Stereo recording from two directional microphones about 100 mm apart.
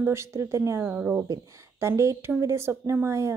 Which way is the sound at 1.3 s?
30° right (ahead or behind).